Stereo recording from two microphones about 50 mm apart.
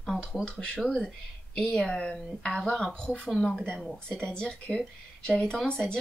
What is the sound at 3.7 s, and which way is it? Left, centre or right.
Speech, centre.